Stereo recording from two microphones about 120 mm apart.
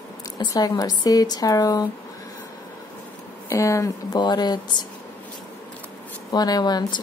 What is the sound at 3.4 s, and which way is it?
Speech, 25° left (ahead or behind).